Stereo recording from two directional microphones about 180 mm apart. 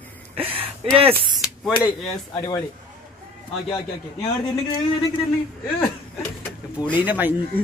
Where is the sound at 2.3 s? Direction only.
25° left (ahead or behind).